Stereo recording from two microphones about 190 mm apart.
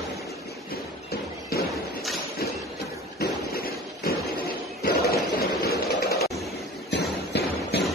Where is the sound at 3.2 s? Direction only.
50° left (ahead or behind).